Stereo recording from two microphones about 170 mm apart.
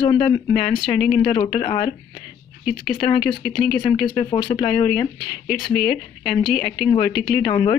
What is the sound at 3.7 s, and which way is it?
Speech, 25° left (ahead or behind).